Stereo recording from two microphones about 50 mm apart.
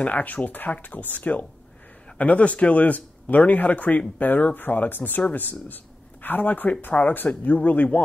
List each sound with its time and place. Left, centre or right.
0.0 s speech: left